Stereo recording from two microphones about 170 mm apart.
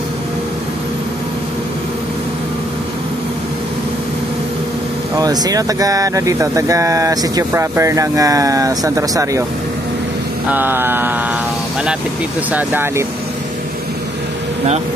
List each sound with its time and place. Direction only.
5.1 s speech: 20° right (ahead or behind)
10.5 s mantra: 10° right (ahead or behind)
12.5 s mantra: 10° right (ahead or behind)